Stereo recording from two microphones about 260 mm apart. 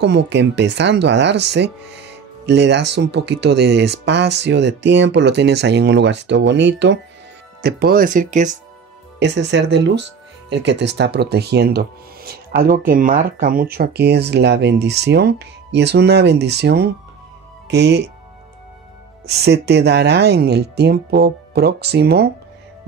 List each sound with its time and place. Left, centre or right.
0.0 s speech: right
9.2 s speech: right
19.2 s speech: right